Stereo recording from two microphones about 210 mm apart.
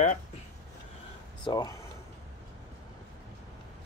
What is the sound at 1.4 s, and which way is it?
Speech, 20° left (ahead or behind).